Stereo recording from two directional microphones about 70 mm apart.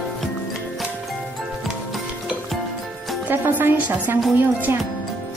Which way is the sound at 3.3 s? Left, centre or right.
Right.